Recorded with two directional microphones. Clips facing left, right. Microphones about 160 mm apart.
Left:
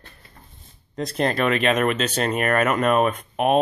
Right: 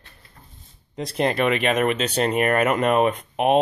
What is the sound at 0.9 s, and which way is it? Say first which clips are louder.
Speech: even; 10° right (ahead or behind).